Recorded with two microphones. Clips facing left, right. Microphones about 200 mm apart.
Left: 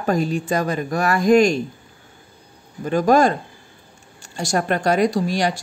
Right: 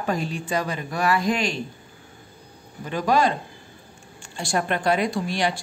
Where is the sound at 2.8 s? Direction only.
45° left (ahead or behind).